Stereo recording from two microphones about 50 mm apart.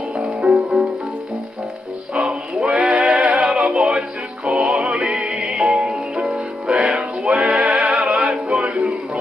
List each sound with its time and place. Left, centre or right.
0.6 s music: centre
2.1 s music: right; by 6.4 s centre
6.7 s music: right